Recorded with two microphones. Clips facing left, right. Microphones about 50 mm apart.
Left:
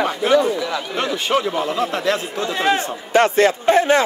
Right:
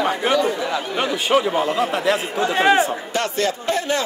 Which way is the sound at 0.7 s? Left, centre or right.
Centre.